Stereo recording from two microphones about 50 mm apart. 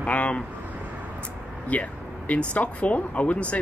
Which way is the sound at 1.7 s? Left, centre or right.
Left.